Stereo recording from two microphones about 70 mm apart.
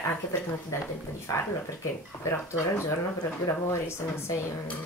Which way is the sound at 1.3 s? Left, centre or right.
Left.